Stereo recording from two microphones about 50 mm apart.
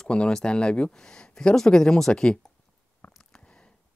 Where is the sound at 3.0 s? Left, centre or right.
Left.